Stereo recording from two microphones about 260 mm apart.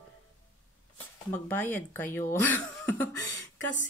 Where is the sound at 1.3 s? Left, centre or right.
Centre.